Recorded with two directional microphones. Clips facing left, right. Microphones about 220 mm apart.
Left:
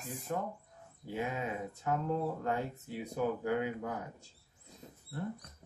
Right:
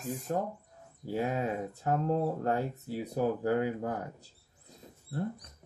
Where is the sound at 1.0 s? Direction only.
40° right (ahead or behind).